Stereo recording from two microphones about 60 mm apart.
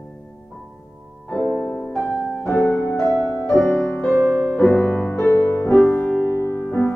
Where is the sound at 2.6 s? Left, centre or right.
Left.